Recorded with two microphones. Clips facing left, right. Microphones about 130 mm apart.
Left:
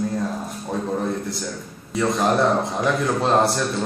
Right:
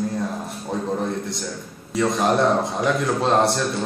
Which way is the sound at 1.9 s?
Centre (ahead or behind).